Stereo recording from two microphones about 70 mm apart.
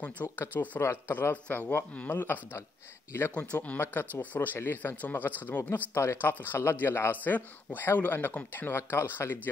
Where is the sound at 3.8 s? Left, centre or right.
Left.